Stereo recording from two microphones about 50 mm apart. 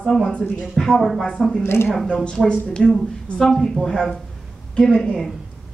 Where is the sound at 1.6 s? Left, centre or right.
Left.